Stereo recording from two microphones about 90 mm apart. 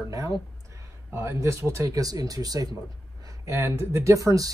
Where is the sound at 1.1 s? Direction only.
30° right (ahead or behind).